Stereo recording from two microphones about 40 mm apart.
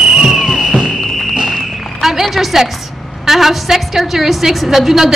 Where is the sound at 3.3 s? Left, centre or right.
Centre.